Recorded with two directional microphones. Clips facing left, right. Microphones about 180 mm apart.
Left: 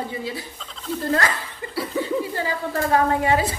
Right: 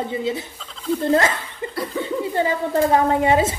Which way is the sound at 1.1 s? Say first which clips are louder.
Right 4 dB; 25° right (ahead or behind).